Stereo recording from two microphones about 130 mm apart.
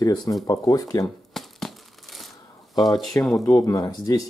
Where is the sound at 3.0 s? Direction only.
5° left (ahead or behind).